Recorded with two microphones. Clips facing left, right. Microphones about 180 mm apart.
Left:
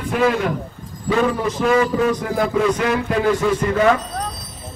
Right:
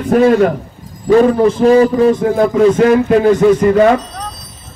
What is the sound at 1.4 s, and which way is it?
Speech, 35° right (ahead or behind).